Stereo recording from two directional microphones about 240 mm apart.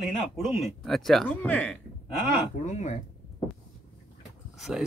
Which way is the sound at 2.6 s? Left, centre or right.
Left.